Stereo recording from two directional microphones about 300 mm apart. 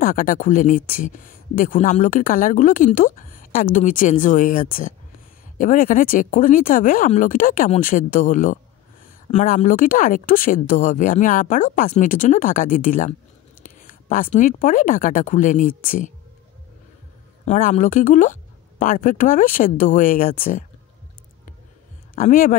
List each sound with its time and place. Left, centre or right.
0.0 s speech: left
17.5 s speech: left
22.1 s speech: left